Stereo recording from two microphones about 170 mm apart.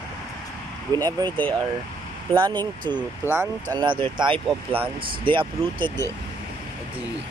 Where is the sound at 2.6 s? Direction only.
25° right (ahead or behind).